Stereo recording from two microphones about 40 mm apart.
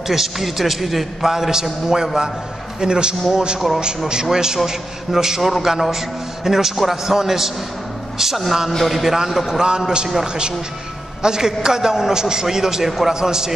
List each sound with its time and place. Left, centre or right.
0.1 s a man's voice: centre
3.5 s a man's voice: centre
4.1 s a man's voice: centre
9.1 s a man's voice: centre